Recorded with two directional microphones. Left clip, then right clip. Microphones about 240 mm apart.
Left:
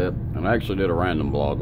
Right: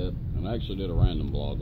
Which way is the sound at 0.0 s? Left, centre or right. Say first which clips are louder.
Left 11 dB; left.